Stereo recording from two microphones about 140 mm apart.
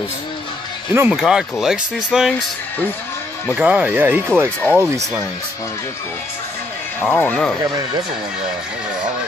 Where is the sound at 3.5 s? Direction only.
10° right (ahead or behind).